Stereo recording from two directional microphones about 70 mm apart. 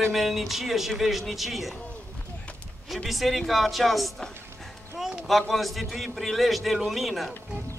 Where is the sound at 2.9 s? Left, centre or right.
Centre.